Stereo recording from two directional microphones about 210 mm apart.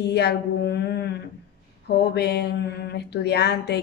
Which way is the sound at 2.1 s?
50° left (ahead or behind).